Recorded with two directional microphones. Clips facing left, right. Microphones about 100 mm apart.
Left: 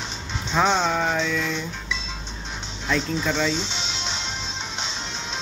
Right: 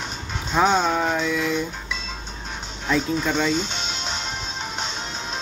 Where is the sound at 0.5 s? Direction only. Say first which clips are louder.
Right 2 dB; 5° right (ahead or behind).